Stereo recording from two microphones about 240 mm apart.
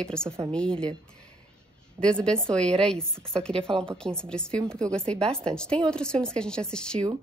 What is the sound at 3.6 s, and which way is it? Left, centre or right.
Speech, right.